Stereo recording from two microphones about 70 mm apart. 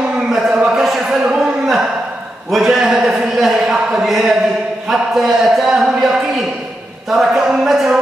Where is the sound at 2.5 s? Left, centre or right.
Centre.